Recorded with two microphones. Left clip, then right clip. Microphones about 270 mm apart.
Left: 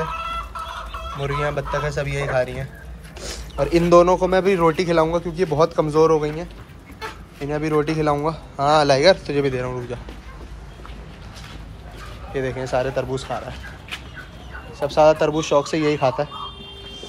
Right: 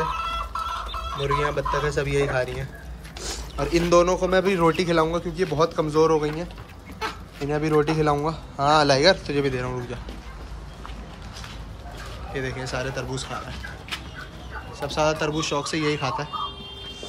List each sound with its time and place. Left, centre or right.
0.1 s chicken: right
1.2 s speech: centre
12.4 s a man's voice: centre
14.8 s a man's voice: centre